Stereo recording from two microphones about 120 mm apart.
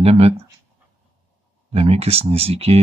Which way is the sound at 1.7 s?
60° right (ahead or behind).